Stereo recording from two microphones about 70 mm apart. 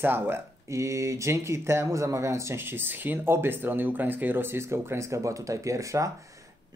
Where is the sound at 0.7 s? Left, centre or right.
Right.